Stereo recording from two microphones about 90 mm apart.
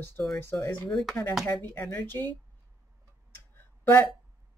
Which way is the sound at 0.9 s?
5° left (ahead or behind).